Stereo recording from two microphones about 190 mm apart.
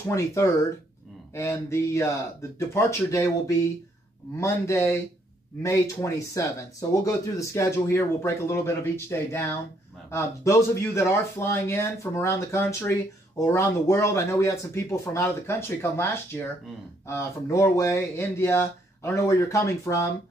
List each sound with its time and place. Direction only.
0.1 s speech: 15° left (ahead or behind)